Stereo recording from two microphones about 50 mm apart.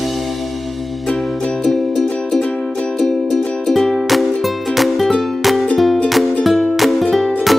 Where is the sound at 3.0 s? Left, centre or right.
Centre.